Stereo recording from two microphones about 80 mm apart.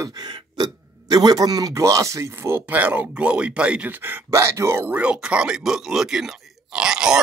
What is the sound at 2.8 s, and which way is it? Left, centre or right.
Speech, centre.